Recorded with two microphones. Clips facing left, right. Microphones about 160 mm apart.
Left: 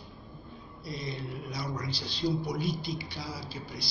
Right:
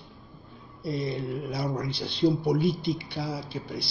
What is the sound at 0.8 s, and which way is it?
Speech, 60° right (ahead or behind).